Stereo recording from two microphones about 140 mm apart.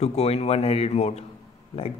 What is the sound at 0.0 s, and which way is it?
Speech, 45° left (ahead or behind).